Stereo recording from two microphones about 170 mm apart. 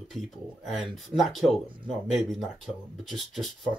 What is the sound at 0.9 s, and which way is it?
Speech, centre (ahead or behind).